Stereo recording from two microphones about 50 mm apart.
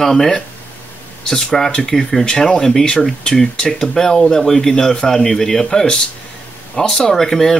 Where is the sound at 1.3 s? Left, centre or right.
Centre.